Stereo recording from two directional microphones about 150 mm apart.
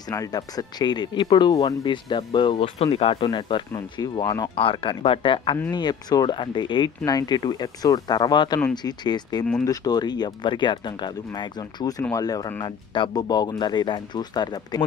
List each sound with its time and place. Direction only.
0.1 s speech: 25° left (ahead or behind)
4.6 s speech: 35° left (ahead or behind)